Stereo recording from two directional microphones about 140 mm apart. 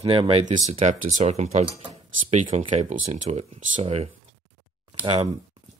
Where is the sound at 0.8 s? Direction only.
60° right (ahead or behind).